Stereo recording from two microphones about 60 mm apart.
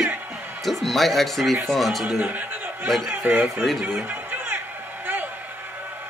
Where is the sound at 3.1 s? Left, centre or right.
Right.